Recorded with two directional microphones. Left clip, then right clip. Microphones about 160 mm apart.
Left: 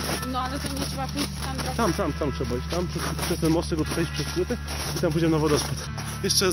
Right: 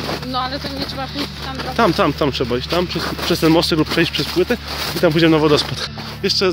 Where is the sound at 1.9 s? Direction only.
90° right.